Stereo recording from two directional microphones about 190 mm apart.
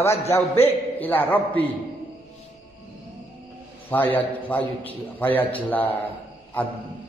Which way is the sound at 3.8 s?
10° left (ahead or behind).